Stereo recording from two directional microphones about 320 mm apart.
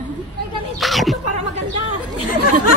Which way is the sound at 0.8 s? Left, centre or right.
Centre.